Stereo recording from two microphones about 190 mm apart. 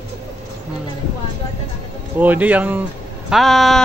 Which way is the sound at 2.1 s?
10° right (ahead or behind).